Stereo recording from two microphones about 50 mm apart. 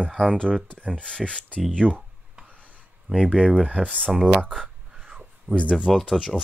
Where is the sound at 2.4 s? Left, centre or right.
Right.